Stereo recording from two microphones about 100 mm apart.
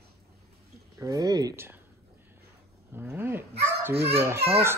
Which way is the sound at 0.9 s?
35° right (ahead or behind).